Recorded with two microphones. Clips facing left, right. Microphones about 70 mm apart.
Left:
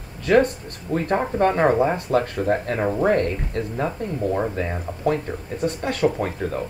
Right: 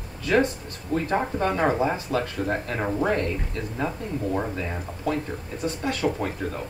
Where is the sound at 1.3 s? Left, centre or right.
Left.